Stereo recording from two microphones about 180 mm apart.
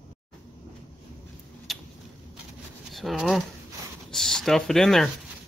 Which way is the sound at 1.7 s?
Centre (ahead or behind).